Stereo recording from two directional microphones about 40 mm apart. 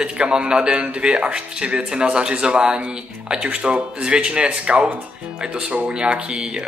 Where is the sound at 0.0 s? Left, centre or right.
Right.